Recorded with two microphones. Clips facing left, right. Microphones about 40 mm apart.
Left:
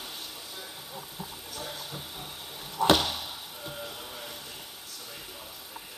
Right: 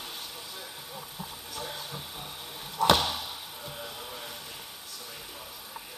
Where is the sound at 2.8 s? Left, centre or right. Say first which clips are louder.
Even; centre.